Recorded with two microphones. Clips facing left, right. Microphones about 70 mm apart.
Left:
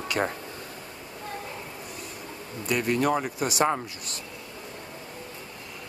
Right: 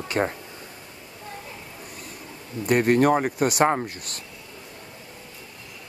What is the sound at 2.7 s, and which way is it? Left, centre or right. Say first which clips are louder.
Speech: right 6 dB; right.